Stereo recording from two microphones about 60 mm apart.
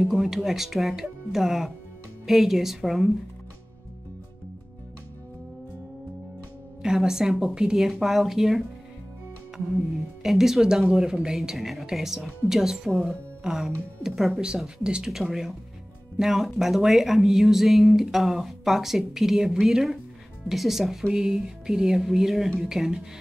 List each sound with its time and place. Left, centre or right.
0.0 s speech: centre
6.8 s a woman's voice: centre
10.2 s a woman's voice: centre
16.2 s speech: centre